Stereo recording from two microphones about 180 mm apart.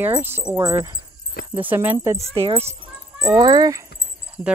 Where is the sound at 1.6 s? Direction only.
10° right (ahead or behind).